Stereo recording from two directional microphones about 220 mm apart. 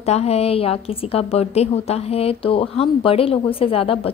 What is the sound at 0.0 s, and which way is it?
A woman's voice, 30° left (ahead or behind).